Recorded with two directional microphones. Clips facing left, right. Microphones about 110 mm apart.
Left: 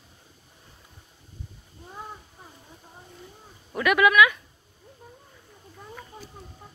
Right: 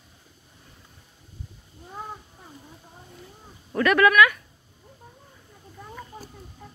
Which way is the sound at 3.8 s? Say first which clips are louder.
Right 1 dB; 10° left (ahead or behind).